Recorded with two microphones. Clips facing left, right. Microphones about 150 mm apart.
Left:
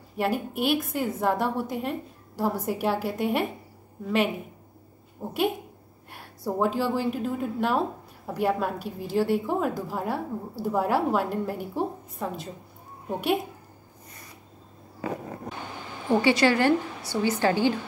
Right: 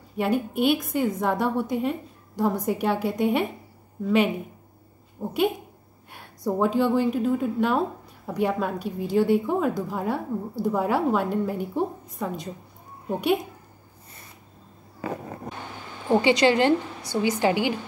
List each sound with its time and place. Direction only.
0.2 s a woman's voice: centre (ahead or behind)
5.2 s a woman's voice: 5° left (ahead or behind)
16.1 s a woman's voice: 20° right (ahead or behind)